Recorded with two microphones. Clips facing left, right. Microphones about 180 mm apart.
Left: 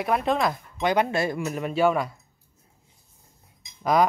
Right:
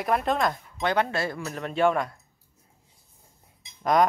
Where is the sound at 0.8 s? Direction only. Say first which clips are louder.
Left 3 dB; 15° left (ahead or behind).